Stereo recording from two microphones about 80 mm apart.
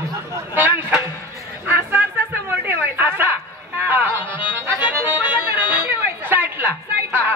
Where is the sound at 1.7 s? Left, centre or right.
Right.